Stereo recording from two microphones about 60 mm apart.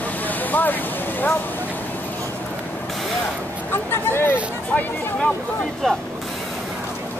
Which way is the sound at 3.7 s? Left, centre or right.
Left.